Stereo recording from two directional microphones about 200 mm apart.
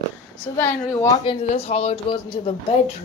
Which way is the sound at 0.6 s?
20° left (ahead or behind).